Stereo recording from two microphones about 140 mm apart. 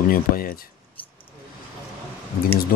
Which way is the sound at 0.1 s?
90° left.